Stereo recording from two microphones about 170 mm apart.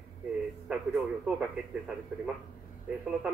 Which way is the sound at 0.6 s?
5° right (ahead or behind).